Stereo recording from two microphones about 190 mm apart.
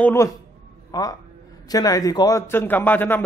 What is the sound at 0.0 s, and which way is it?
A man's voice, 15° left (ahead or behind).